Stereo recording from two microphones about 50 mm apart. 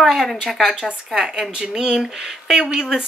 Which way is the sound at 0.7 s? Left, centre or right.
Centre.